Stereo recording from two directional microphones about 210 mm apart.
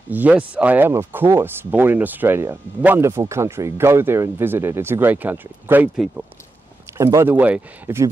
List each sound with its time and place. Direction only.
0.1 s speech: 5° right (ahead or behind)